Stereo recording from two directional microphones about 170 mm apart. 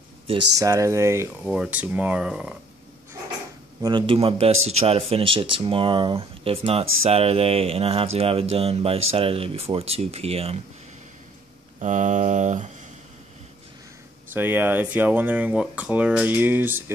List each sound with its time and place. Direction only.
0.6 s speech: 20° right (ahead or behind)
1.4 s speech: 5° right (ahead or behind)
3.8 s a man's voice: 30° right (ahead or behind)
11.8 s mantra: 45° right (ahead or behind)
14.3 s speech: 10° right (ahead or behind)